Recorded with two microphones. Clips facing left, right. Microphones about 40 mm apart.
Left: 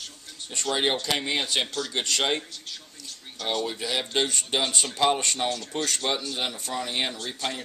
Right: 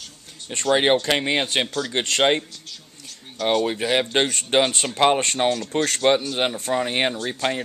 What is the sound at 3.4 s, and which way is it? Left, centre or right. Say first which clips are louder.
Speech: right 8 dB; right.